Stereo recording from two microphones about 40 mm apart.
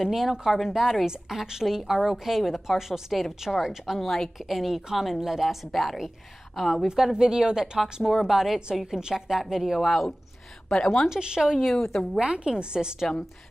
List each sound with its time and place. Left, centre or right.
0.0 s speech: centre
4.0 s speech: centre
4.4 s speech: centre
6.9 s speech: centre
7.8 s speech: centre
9.8 s speech: centre
10.7 s a woman's voice: centre
11.1 s a woman's voice: centre
11.5 s a woman's voice: centre
12.2 s a woman's voice: right